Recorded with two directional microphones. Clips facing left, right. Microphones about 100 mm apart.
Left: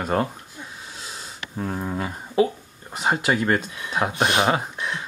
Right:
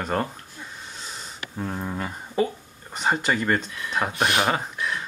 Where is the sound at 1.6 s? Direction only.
5° left (ahead or behind); by 4.5 s 20° left (ahead or behind).